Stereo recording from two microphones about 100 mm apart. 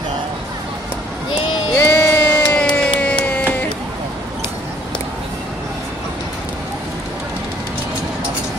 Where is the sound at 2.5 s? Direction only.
10° left (ahead or behind).